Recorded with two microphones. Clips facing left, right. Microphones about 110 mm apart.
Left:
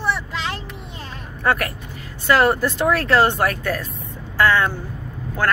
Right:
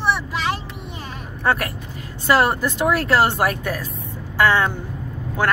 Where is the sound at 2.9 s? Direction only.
20° right (ahead or behind).